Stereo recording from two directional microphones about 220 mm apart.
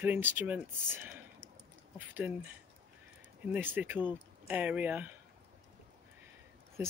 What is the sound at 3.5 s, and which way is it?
Speech, 10° right (ahead or behind).